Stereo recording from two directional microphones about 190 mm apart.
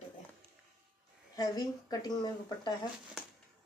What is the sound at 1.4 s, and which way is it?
Speech, 20° left (ahead or behind).